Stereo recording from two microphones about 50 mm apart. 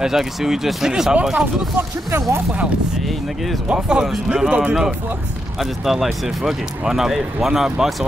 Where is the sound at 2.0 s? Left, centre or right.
Right.